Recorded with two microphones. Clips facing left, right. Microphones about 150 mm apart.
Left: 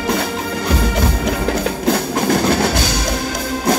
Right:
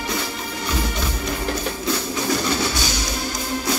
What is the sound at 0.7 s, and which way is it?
Music, 90° left.